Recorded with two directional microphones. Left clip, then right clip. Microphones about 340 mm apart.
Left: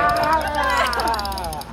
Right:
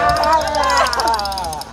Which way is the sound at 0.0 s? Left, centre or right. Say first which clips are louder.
Right 4 dB; right.